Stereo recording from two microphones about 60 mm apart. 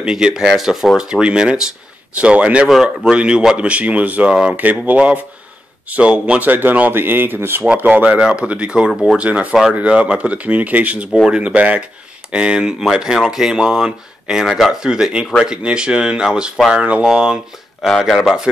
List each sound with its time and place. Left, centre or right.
0.0 s speech: centre
2.7 s speech: centre; by 7.6 s right
7.8 s speech: right
9.2 s speech: right
9.5 s speech: centre
9.8 s speech: centre
18.0 s speech: centre